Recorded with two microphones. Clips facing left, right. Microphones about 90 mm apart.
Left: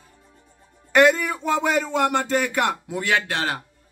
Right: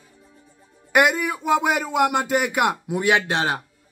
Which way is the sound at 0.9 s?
15° right (ahead or behind).